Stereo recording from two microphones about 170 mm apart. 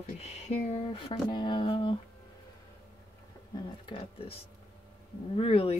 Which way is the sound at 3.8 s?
35° left (ahead or behind).